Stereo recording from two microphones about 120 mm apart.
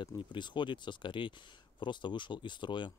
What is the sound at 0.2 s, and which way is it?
Speech, 40° left (ahead or behind).